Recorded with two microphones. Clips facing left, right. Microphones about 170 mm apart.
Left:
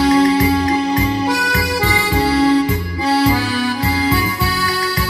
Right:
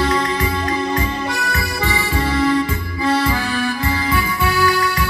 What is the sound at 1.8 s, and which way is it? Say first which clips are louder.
Music: left 1 dB; 40° left (ahead or behind).